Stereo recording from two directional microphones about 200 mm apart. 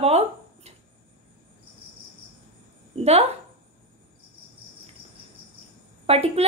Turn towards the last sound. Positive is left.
turn(degrees=-30)  # may be behind; listen again after turning